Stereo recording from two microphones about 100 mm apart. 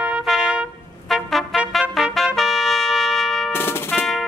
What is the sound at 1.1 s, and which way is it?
Trumpet, centre (ahead or behind).